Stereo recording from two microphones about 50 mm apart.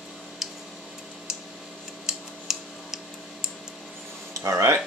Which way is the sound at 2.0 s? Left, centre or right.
Centre.